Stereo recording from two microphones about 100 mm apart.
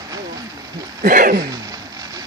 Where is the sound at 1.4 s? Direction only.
35° right (ahead or behind).